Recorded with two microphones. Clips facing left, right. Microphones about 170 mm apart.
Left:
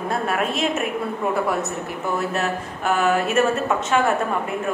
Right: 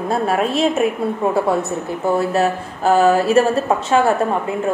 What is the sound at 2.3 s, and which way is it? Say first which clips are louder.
Speech: right 6 dB; 35° right (ahead or behind).